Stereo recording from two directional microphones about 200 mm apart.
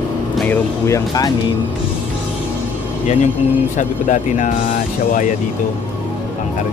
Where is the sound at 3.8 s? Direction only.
35° left (ahead or behind).